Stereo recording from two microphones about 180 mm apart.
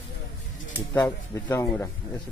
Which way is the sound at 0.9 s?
15° left (ahead or behind).